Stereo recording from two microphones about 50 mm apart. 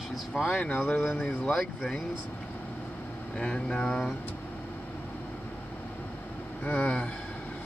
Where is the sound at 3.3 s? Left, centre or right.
Centre.